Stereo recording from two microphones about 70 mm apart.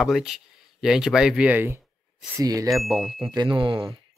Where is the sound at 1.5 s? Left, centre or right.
Right.